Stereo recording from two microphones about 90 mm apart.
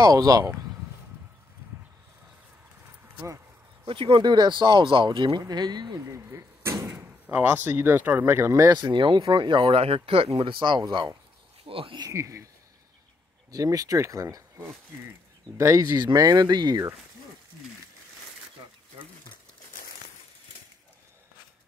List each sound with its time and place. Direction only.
0.0 s speech: 40° right (ahead or behind)
3.8 s speech: 80° right
4.2 s speech: 55° right (ahead or behind)
6.0 s speech: 35° right (ahead or behind)
6.9 s speech: 25° right (ahead or behind)
8.6 s speech: 55° right (ahead or behind)
11.6 s speech: 80° right
12.1 s speech: 35° right (ahead or behind)
13.5 s speech: 40° right (ahead or behind)